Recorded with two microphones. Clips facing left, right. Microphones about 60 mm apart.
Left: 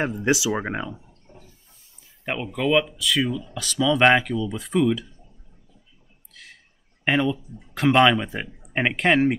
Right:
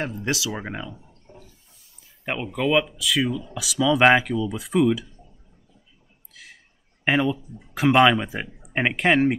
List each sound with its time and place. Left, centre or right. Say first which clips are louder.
0.0 s speech: left 5 dB; left
2.2 s speech: even; centre
6.3 s a sound: even; centre
7.1 s speech: even; centre